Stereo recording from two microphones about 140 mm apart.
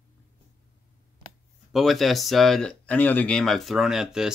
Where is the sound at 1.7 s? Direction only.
Centre (ahead or behind).